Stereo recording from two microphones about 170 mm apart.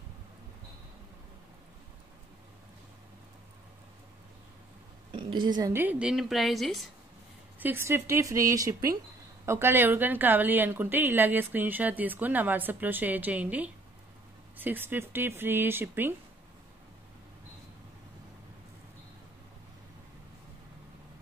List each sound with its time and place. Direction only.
5.1 s a woman's voice: 25° right (ahead or behind); by 6.9 s centre (ahead or behind)
7.5 s a woman's voice: 10° right (ahead or behind)